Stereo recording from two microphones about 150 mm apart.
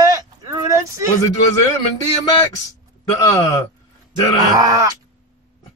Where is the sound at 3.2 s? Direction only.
20° left (ahead or behind).